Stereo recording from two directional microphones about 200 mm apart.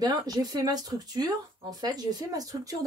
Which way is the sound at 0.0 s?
20° right (ahead or behind).